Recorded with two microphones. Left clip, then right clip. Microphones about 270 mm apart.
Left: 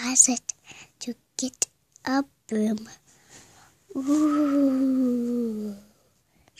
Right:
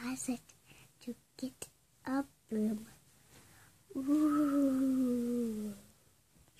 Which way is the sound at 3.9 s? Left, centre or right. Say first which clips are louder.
Left 8 dB; left.